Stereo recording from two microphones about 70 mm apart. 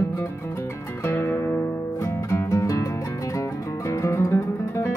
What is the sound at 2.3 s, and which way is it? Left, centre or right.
Music, left.